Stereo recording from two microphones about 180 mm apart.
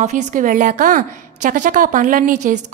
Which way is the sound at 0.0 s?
40° right (ahead or behind).